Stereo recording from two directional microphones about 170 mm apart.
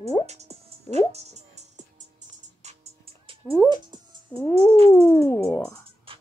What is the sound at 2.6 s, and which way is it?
Fowl, 35° right (ahead or behind).